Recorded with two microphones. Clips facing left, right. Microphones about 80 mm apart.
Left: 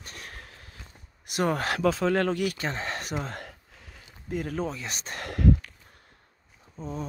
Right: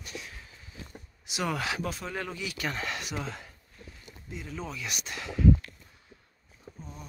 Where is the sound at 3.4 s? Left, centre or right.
Left.